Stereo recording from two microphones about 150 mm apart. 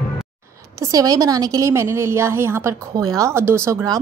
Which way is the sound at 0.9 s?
25° right (ahead or behind).